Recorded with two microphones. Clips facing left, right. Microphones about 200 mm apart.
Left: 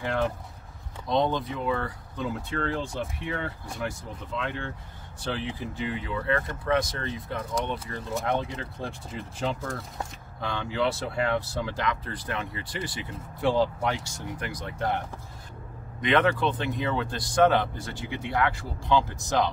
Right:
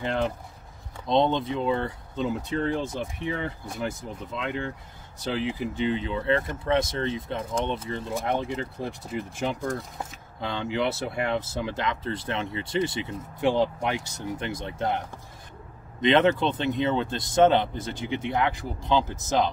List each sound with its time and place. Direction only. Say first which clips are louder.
0.0 s speech: right 1 dB; 20° right (ahead or behind)
16.0 s speech: right 3 dB; 25° right (ahead or behind)